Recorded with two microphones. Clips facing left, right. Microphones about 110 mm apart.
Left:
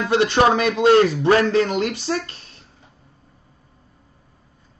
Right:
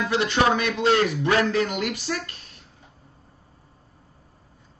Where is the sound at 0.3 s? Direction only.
30° left (ahead or behind).